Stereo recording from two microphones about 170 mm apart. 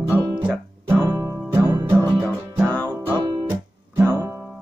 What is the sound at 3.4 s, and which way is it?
Guitar, 15° right (ahead or behind).